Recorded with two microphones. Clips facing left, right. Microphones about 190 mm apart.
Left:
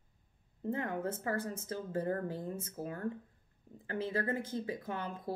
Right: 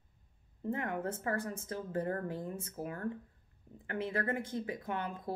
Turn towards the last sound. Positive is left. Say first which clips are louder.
# right 1 dB
turn(degrees=35)  # may be behind; listen again after turning